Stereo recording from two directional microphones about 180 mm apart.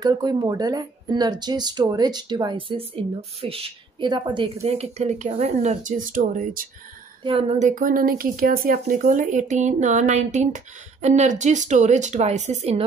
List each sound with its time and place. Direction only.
0.0 s speech: 20° right (ahead or behind); by 6.7 s 50° right (ahead or behind)
7.2 s a woman's voice: 30° right (ahead or behind)